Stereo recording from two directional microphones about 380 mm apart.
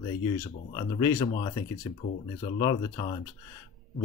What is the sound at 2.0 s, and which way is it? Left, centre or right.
Speech, left.